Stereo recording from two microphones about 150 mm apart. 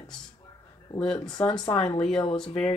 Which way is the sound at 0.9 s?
5° left (ahead or behind).